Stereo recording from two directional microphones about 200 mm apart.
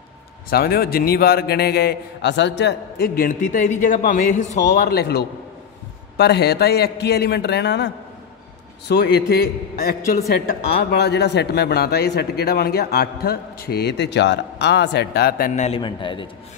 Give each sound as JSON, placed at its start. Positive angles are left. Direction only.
{"t": 0.5, "sound": "a man's voice", "side_deg": 50}
{"t": 15.8, "sound": "a man's voice", "side_deg": 25}